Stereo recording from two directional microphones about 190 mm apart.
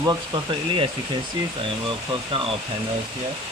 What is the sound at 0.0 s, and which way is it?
Speech, 25° right (ahead or behind).